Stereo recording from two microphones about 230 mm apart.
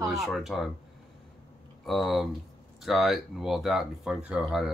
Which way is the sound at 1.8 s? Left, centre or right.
Centre.